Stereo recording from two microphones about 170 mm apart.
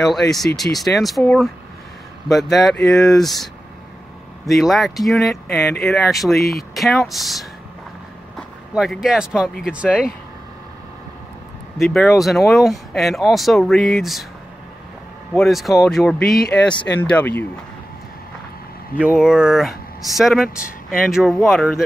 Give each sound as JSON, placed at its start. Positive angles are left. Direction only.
{"t": 0.0, "sound": "speech", "side_deg": 0}
{"t": 4.6, "sound": "speech", "side_deg": 0}
{"t": 11.8, "sound": "speech", "side_deg": 0}
{"t": 15.3, "sound": "speech", "side_deg": 0}
{"t": 18.9, "sound": "speech", "side_deg": -5}
{"t": 20.4, "sound": "speech", "side_deg": 55}
{"t": 21.1, "sound": "speech", "side_deg": 0}